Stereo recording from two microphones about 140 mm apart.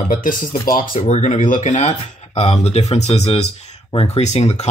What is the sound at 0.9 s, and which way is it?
Speech, 55° left (ahead or behind).